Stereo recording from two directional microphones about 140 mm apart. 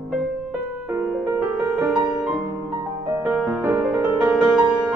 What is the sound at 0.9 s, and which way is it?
Music, 10° right (ahead or behind).